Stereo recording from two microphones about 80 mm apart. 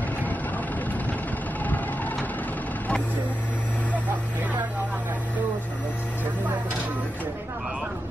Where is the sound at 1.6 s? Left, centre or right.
Left.